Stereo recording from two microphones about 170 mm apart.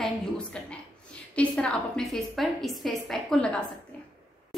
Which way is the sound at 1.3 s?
5° left (ahead or behind).